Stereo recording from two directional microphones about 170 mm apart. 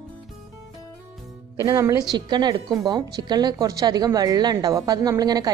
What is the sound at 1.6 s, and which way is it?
A woman's voice, 20° right (ahead or behind).